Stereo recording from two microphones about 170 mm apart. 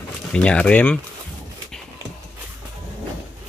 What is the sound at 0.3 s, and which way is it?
Speech, 5° left (ahead or behind).